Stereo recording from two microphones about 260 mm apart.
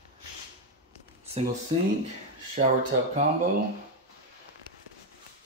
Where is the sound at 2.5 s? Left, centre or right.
Right.